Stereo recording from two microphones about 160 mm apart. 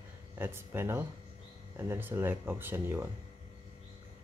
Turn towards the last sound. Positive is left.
turn(degrees=-15)  # may be behind; listen again after turning